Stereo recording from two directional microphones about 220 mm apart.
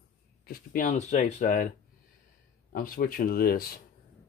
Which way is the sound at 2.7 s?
40° left (ahead or behind).